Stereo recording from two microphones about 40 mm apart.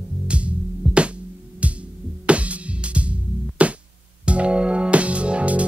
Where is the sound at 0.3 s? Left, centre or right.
Right.